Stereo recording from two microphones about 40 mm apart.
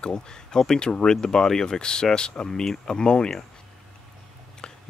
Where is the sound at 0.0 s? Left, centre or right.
Left.